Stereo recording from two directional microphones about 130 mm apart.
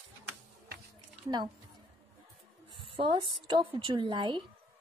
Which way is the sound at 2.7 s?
40° right (ahead or behind).